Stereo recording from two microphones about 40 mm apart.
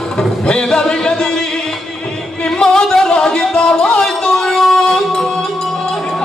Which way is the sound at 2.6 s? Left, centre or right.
Centre.